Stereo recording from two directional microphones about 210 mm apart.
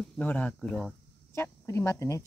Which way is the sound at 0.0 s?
5° left (ahead or behind).